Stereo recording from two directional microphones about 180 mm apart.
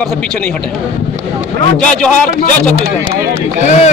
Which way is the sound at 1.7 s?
5° left (ahead or behind).